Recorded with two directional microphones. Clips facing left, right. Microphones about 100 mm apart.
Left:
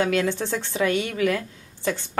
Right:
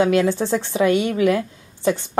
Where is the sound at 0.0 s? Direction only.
20° right (ahead or behind).